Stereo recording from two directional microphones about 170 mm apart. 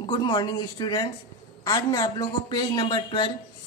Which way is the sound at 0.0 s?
25° left (ahead or behind).